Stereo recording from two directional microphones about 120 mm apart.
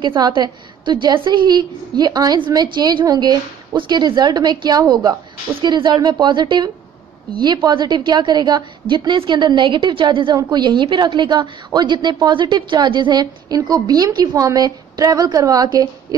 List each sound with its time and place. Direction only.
0.0 s a woman's voice: 40° right (ahead or behind)